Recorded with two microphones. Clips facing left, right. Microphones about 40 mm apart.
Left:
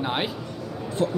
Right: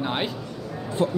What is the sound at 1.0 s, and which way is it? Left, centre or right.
Speech, right.